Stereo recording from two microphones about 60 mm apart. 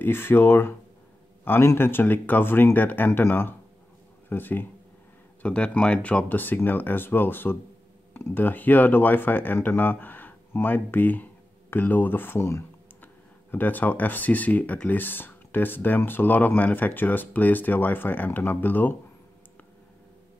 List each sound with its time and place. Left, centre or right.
0.0 s speech: left
5.4 s speech: left
6.3 s speech: left